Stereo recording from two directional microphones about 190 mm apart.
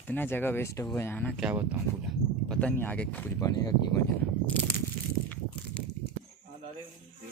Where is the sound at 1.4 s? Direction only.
10° right (ahead or behind).